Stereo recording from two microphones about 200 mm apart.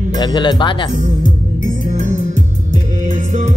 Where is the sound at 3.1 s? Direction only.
35° right (ahead or behind).